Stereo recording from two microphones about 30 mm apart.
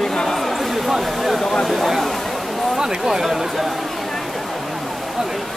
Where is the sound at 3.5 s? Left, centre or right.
Centre.